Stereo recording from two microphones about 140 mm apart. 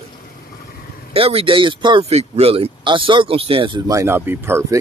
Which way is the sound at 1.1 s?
45° right (ahead or behind).